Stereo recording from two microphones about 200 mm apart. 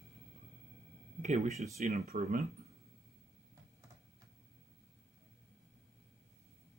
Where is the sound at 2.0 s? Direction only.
50° right (ahead or behind).